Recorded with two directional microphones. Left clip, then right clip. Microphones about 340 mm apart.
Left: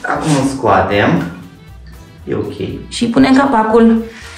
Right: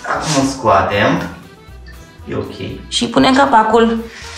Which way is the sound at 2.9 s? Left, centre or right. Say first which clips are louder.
Even; centre.